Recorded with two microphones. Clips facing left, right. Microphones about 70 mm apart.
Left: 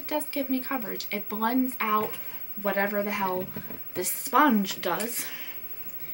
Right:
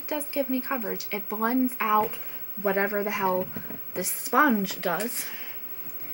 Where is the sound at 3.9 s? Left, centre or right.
Centre.